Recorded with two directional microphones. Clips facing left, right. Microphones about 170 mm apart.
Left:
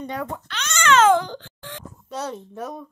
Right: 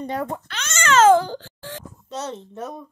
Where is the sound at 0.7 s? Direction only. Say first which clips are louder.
Right 2 dB; 45° right (ahead or behind).